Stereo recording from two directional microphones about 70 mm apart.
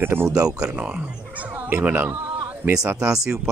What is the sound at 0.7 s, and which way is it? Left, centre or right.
Speech, centre.